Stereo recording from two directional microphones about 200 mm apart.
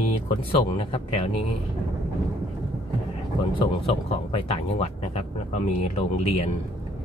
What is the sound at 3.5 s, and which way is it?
Speech, 25° left (ahead or behind).